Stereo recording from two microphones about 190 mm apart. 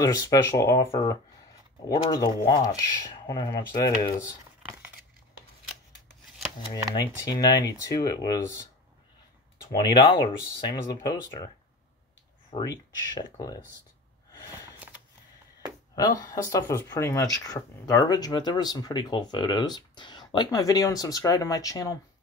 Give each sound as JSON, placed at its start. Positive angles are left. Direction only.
{"t": 0.0, "sound": "speech", "side_deg": 20}
{"t": 1.9, "sound": "speech", "side_deg": 20}
{"t": 7.2, "sound": "speech", "side_deg": 20}
{"t": 9.7, "sound": "speech", "side_deg": 25}
{"t": 12.5, "sound": "speech", "side_deg": 20}
{"t": 15.9, "sound": "speech", "side_deg": 20}